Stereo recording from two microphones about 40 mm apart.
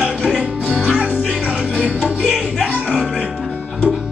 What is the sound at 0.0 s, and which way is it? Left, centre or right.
Music, centre.